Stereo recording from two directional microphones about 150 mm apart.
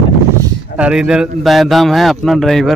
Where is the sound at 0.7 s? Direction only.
5° right (ahead or behind).